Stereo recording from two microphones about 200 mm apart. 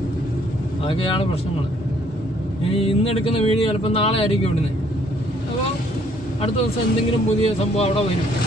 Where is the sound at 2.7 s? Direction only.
30° left (ahead or behind).